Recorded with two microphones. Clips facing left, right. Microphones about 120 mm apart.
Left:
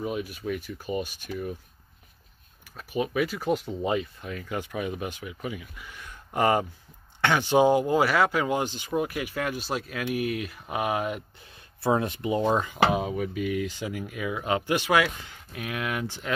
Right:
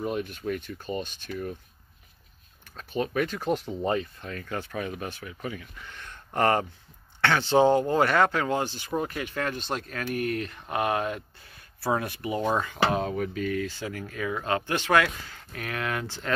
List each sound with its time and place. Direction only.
0.0 s speech: 5° left (ahead or behind)
2.7 s speech: 10° left (ahead or behind)
11.8 s speech: 20° left (ahead or behind)